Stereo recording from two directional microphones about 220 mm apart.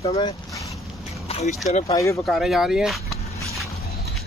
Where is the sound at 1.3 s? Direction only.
25° left (ahead or behind).